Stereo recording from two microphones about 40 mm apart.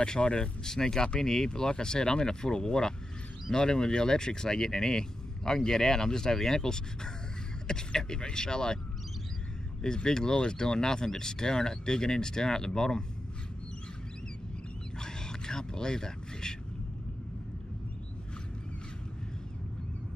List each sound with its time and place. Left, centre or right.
0.0 s speech: left
9.8 s speech: centre
15.0 s a sound: centre